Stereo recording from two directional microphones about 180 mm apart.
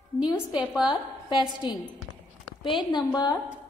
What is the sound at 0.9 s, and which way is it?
Speech, 25° left (ahead or behind).